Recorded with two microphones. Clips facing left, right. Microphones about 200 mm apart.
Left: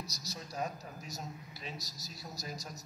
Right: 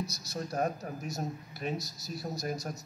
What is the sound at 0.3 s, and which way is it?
A man's voice, 55° right (ahead or behind).